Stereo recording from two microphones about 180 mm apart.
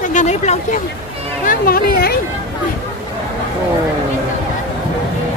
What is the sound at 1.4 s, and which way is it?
Speech, 55° left (ahead or behind).